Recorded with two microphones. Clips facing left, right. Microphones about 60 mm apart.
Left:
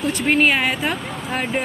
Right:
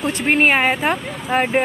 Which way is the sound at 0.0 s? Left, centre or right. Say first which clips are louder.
Right 1 dB; right.